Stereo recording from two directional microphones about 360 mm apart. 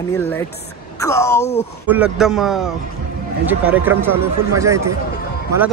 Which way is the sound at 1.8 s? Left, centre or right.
Centre.